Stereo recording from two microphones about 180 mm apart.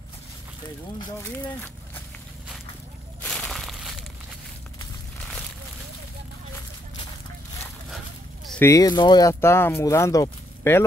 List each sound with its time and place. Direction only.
1.0 s speech: 25° left (ahead or behind)
3.2 s a sound: 5° left (ahead or behind)
8.5 s speech: 10° left (ahead or behind)